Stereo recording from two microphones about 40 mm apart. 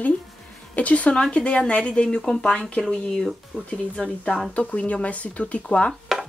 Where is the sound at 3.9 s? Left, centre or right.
Left.